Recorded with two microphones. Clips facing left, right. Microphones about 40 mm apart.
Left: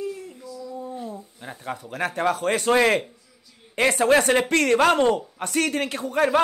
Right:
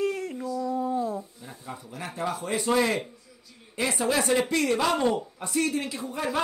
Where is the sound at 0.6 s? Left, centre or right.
Right.